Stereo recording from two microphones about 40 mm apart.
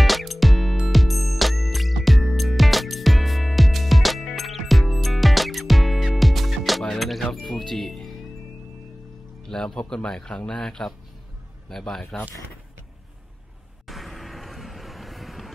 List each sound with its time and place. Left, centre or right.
0.0 s music: centre
9.5 s speech: centre
13.8 s vehicle: centre